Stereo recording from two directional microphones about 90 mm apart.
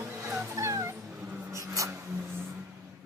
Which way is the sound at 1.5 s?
35° right (ahead or behind).